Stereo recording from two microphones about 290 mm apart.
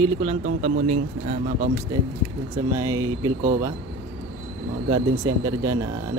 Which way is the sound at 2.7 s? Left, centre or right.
Centre.